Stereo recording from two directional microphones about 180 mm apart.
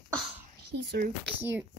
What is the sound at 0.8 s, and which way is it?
Speech, 60° right (ahead or behind).